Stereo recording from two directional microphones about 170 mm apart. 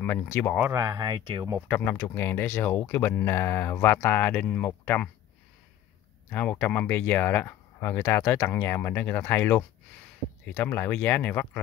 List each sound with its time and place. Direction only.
0.0 s speech: 10° left (ahead or behind)
0.6 s speech: 15° right (ahead or behind)
1.7 s speech: 15° left (ahead or behind)
6.3 s speech: 10° left (ahead or behind)